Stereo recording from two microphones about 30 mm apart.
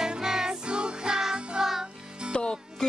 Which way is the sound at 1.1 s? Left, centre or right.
Centre.